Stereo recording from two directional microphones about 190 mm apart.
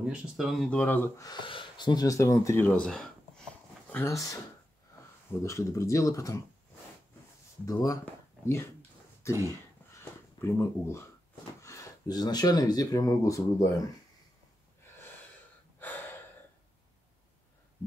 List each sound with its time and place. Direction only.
0.0 s speech: 5° right (ahead or behind)
3.9 s speech: 15° left (ahead or behind)
5.4 s speech: 15° left (ahead or behind)
7.6 s speech: 20° left (ahead or behind)
9.9 s a sound: 15° left (ahead or behind)
11.6 s speech: 15° left (ahead or behind)